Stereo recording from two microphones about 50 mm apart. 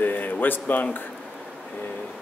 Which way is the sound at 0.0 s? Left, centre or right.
Left.